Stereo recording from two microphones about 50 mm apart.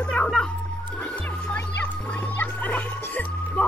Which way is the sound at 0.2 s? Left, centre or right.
Left.